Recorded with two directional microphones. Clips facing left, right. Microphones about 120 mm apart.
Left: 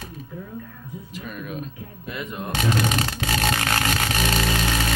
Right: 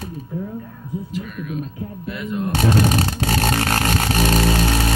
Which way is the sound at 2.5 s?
40° right (ahead or behind).